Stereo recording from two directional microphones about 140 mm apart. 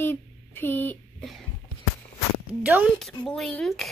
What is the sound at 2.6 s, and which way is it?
Speech, 10° right (ahead or behind).